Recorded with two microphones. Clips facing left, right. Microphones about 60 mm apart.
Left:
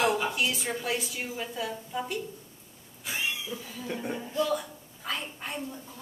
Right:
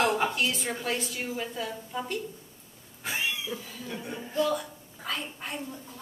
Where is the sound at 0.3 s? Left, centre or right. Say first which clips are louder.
Even; centre.